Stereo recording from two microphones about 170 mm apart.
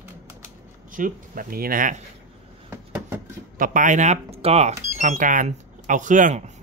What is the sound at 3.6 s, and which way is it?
Speech, 50° right (ahead or behind).